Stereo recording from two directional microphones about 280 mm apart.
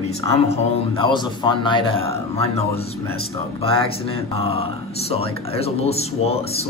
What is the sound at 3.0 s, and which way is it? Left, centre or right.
Speech, right.